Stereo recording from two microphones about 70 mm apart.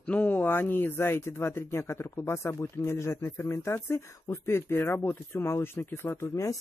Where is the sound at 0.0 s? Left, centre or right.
Left.